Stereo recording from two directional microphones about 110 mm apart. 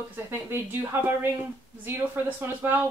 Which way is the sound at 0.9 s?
20° right (ahead or behind).